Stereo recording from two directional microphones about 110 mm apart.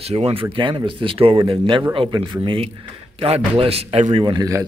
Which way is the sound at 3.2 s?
60° right (ahead or behind).